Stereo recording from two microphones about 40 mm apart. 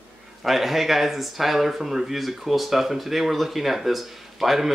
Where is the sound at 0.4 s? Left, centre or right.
Centre.